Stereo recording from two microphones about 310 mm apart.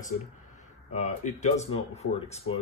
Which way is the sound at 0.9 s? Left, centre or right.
Left.